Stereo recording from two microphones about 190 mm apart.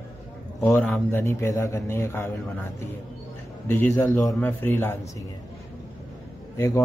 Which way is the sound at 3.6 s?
10° left (ahead or behind).